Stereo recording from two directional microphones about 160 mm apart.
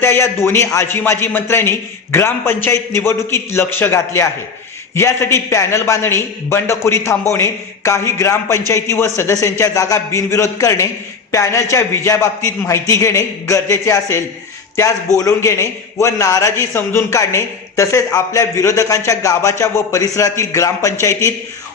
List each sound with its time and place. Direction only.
0.0 s a man's voice: 15° left (ahead or behind)